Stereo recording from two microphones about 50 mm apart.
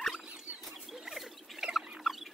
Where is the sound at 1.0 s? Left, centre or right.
Centre.